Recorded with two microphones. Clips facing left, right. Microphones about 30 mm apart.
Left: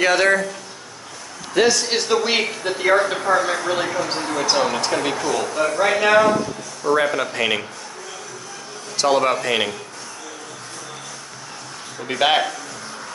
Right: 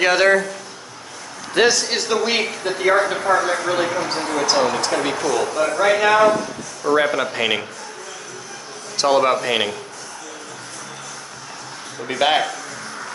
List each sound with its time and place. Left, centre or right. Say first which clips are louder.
0.0 s speech: right 1 dB; centre
1.7 s speech: left 1 dB; centre
8.9 s speech: right 1 dB; centre
12.0 s speech: even; centre